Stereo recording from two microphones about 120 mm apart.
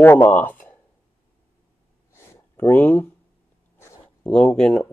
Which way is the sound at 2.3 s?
15° left (ahead or behind).